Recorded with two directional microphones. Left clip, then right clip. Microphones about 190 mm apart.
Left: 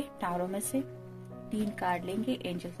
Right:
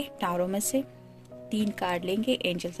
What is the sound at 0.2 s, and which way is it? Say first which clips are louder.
Speech: right 5 dB; 40° right (ahead or behind).